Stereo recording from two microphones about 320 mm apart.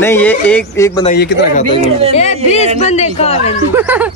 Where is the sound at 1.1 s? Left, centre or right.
Left.